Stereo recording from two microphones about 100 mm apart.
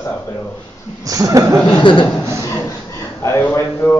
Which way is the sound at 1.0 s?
35° right (ahead or behind).